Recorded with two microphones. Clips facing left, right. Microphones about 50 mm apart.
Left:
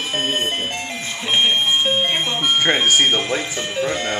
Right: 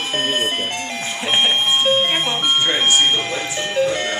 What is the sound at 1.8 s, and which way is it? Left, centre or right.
Speech, centre.